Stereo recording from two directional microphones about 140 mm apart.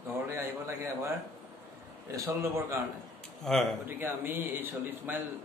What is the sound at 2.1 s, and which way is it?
Speech, 20° right (ahead or behind).